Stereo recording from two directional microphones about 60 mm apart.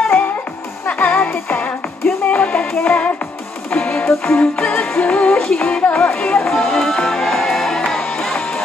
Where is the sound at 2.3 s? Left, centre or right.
Left.